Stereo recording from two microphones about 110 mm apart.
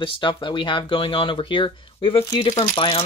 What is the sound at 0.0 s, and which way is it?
Speech, 50° left (ahead or behind).